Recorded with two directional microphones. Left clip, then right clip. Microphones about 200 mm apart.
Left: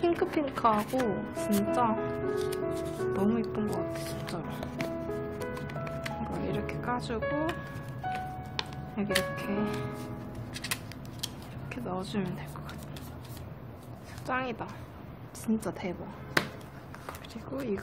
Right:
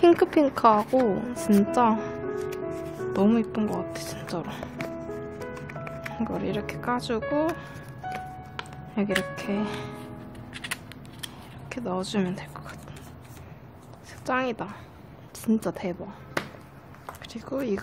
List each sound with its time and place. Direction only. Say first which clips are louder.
0.0 s speech: right 9 dB; 40° right (ahead or behind)
0.9 s speech: right 7 dB; centre (ahead or behind)
2.0 s music: even; centre (ahead or behind)
3.1 s speech: right 7 dB; 40° right (ahead or behind)
4.7 s music: left 2 dB; 5° left (ahead or behind)
6.4 s speech: right 4 dB; 40° right (ahead or behind)
8.0 s music: even; centre (ahead or behind)
9.1 s speech: right 1 dB; centre (ahead or behind)
11.7 s speech: right 6 dB; 40° right (ahead or behind)
14.2 s speech: right 6 dB; 40° right (ahead or behind)
17.3 s speech: right 6 dB; 40° right (ahead or behind)